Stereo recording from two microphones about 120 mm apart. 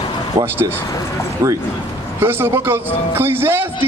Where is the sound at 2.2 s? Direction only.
20° right (ahead or behind).